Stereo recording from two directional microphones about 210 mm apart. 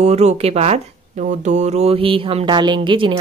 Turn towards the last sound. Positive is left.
turn(degrees=-20)  # may be behind; listen again after turning